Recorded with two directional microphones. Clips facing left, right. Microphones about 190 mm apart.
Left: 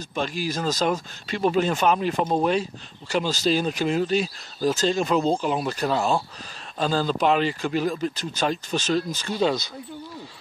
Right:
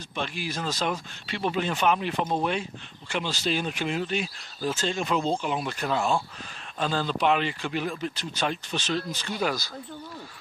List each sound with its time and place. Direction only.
0.1 s speech: 40° left (ahead or behind)
9.4 s speech: 25° left (ahead or behind)